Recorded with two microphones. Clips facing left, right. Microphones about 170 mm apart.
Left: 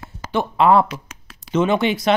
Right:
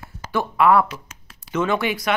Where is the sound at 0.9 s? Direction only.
85° left.